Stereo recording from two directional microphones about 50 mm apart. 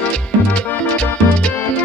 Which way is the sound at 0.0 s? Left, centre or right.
Left.